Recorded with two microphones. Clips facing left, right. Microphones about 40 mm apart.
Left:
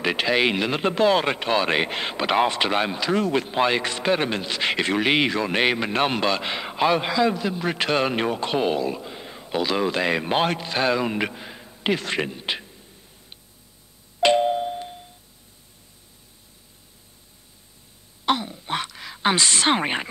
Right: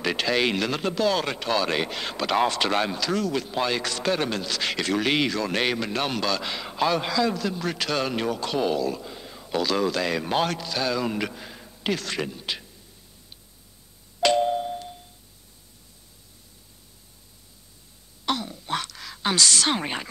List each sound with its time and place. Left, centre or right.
0.0 s speech: left
14.2 s doorbell: left
18.2 s a sound: left